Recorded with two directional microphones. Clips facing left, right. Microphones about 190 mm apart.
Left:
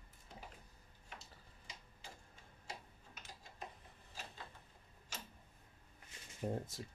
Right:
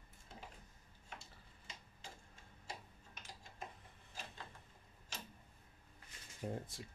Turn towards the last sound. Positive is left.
turn(degrees=40)  # may be behind; listen again after turning